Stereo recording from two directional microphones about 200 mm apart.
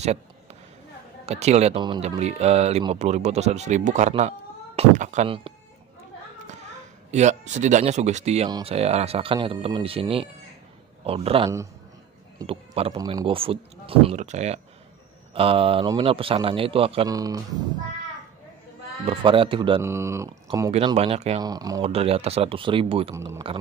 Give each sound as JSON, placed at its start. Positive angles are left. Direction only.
{"t": 1.2, "sound": "speech", "side_deg": -30}
{"t": 7.1, "sound": "speech", "side_deg": -35}
{"t": 19.0, "sound": "speech", "side_deg": -25}
{"t": 19.8, "sound": "speech", "side_deg": -15}
{"t": 20.7, "sound": "speech", "side_deg": -30}
{"t": 21.4, "sound": "speech", "side_deg": -20}
{"t": 21.8, "sound": "speech", "side_deg": -30}
{"t": 23.1, "sound": "speech", "side_deg": -15}